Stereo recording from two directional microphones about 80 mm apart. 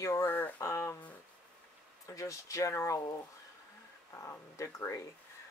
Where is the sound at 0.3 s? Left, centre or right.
Left.